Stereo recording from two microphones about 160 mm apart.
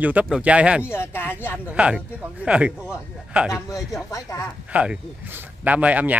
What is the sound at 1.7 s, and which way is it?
Speech, 5° right (ahead or behind).